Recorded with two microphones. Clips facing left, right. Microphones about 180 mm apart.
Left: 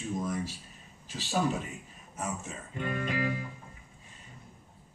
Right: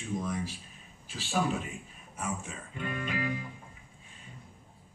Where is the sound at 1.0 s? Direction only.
40° left (ahead or behind).